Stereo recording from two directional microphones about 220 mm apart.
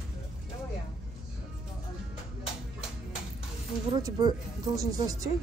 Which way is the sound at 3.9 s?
15° right (ahead or behind).